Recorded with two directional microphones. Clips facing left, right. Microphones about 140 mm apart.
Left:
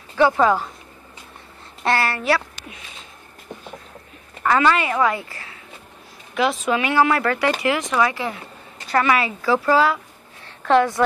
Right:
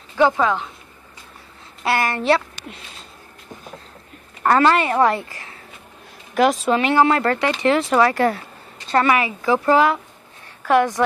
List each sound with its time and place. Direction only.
0.4 s speech: 5° left (ahead or behind)
1.9 s a woman's voice: 15° right (ahead or behind)
2.1 s speech: 25° right (ahead or behind)
4.4 s a woman's voice: 40° right (ahead or behind)
8.1 s speech: 45° right (ahead or behind)
8.8 s a woman's voice: 25° right (ahead or behind)